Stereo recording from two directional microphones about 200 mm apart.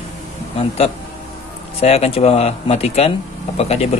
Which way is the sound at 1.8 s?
30° left (ahead or behind).